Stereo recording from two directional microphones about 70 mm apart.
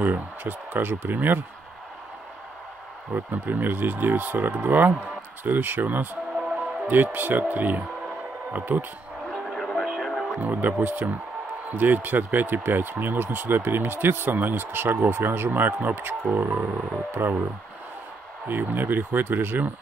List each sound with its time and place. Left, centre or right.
0.0 s speech: right
3.3 s speech: right
6.3 s music: centre
6.9 s speech: right
9.3 s music: centre
10.4 s speech: right
18.5 s speech: right